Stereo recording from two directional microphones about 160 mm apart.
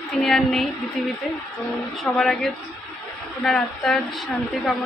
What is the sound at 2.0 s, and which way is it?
A woman's voice, 5° left (ahead or behind).